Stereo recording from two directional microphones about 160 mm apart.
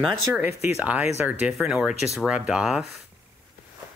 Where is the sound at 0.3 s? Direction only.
15° right (ahead or behind).